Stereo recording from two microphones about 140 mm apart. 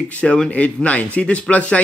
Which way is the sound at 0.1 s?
10° left (ahead or behind).